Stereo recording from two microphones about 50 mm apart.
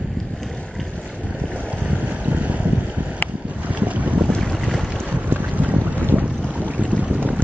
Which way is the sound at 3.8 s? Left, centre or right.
Right.